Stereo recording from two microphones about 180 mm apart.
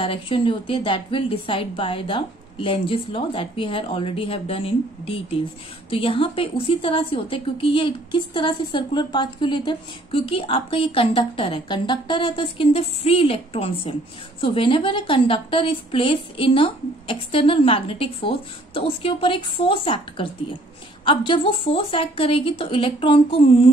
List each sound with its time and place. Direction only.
0.0 s a woman's voice: 30° left (ahead or behind)